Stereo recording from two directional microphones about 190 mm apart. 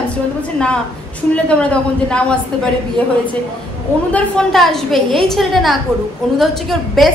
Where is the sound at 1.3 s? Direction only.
5° left (ahead or behind).